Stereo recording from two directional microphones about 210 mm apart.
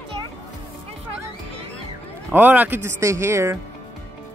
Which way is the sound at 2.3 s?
10° right (ahead or behind).